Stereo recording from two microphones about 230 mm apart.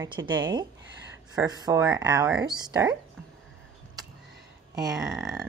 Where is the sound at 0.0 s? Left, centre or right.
Centre.